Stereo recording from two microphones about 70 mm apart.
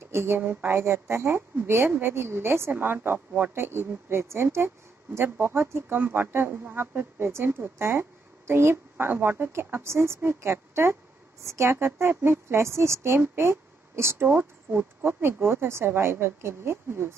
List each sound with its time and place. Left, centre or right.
0.1 s speech: right
0.4 s speech: right